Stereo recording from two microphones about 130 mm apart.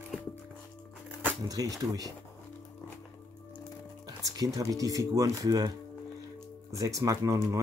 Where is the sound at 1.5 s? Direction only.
25° right (ahead or behind).